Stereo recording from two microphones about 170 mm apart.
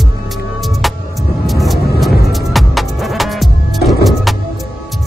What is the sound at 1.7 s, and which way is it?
Music, 65° left (ahead or behind).